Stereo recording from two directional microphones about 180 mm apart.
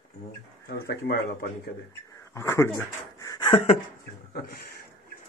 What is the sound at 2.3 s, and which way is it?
Dog, 15° left (ahead or behind).